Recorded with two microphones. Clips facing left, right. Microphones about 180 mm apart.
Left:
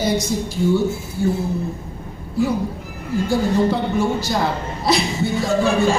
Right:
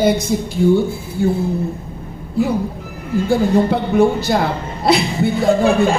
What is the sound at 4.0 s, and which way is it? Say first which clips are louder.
A man's voice: right 5 dB; 60° right (ahead or behind).